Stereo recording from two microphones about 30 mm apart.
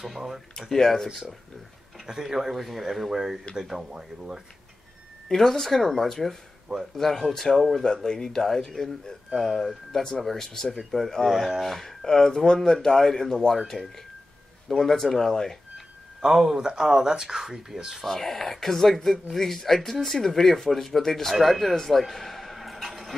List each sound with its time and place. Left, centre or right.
0.1 s speech: centre
0.6 s speech: centre
2.0 s speech: centre
3.1 s speech: centre
5.3 s speech: centre
7.8 s speech: left
9.9 s speech: centre
11.6 s speech: centre
14.8 s speech: centre
16.2 s speech: centre
18.0 s a man's voice: centre
22.6 s a sound: centre